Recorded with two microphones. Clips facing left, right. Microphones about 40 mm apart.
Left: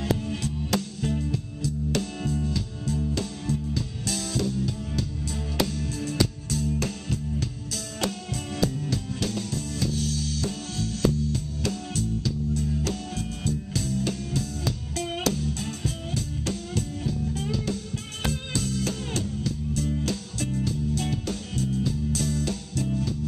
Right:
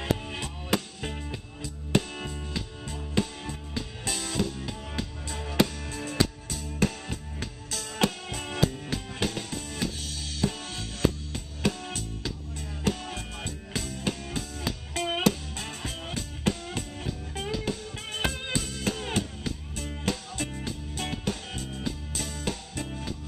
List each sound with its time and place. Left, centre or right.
0.0 s music: right
8.5 s music: right